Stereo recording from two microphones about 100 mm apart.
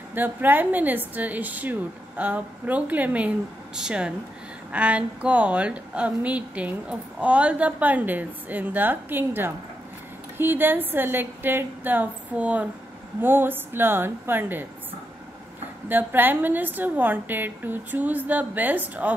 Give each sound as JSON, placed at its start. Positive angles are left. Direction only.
{"t": 0.1, "sound": "a woman's voice", "side_deg": -20}
{"t": 15.9, "sound": "a woman's voice", "side_deg": -20}